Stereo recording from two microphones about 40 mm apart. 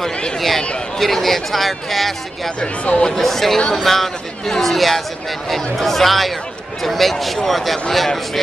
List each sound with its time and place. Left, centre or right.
0.4 s speech: centre
2.6 s speech: left
3.2 s speech: centre